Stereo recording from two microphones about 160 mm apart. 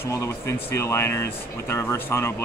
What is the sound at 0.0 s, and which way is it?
Speech, 20° left (ahead or behind).